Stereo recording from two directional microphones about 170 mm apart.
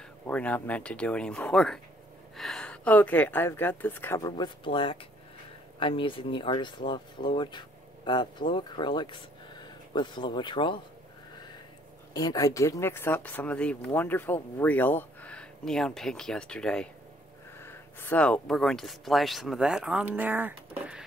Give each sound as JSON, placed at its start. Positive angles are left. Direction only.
{"t": 0.3, "sound": "speech", "side_deg": 10}
{"t": 4.3, "sound": "speech", "side_deg": 30}
{"t": 12.1, "sound": "speech", "side_deg": 25}